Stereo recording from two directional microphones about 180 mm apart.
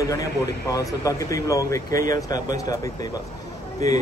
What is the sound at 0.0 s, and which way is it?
Speech, 20° left (ahead or behind).